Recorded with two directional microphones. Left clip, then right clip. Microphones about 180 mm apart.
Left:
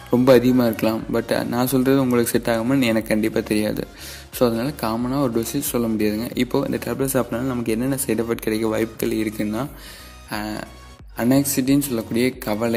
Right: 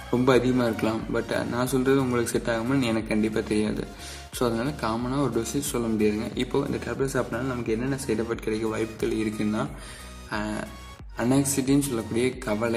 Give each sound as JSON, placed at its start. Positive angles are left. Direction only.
{"t": 0.1, "sound": "speech", "side_deg": 35}